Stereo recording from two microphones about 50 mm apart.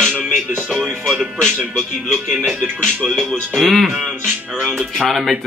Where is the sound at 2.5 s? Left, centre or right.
Right.